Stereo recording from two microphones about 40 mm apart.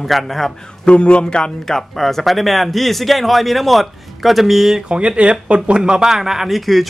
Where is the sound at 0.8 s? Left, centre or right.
Left.